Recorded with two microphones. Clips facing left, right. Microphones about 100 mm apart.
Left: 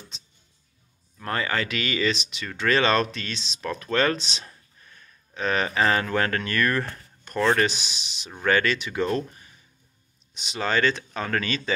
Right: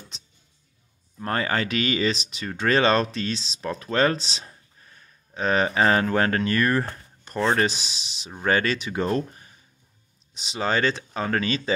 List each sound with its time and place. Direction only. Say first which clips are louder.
1.2 s speech: right 2 dB; 35° right (ahead or behind)